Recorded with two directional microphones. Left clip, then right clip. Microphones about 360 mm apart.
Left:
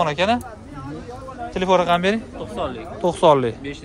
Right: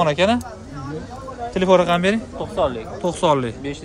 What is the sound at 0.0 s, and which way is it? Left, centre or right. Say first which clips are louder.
Speech: right 2 dB; centre.